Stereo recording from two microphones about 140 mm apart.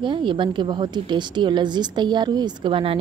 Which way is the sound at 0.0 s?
35° right (ahead or behind).